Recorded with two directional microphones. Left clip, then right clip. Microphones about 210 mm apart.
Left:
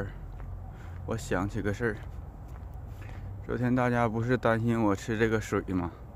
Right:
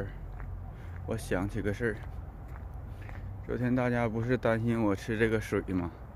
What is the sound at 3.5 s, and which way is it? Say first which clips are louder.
Speech: left 2 dB; 10° left (ahead or behind).